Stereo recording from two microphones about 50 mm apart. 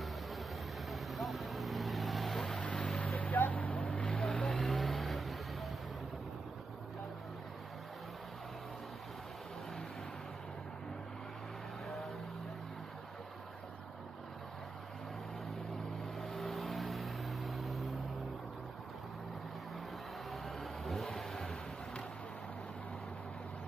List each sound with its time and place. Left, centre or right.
0.8 s vehicle: centre
2.6 s vehicle: left
3.2 s boat: left
4.2 s vehicle: centre
16.2 s vehicle: centre
20.2 s vehicle: centre